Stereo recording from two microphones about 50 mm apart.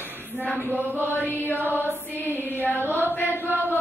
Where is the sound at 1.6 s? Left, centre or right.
Right.